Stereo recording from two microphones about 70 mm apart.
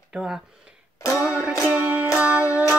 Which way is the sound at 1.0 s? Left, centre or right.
Left.